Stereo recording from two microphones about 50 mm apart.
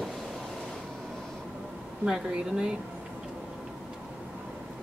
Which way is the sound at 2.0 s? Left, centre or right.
Centre.